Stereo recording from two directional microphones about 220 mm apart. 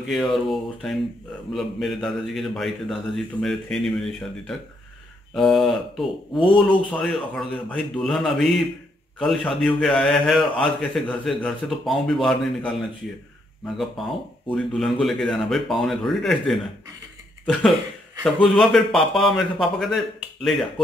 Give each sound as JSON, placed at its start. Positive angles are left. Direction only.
{"t": 0.1, "sound": "a man's voice", "side_deg": 0}